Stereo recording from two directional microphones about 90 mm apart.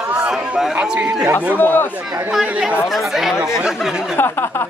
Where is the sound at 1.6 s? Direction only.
20° left (ahead or behind).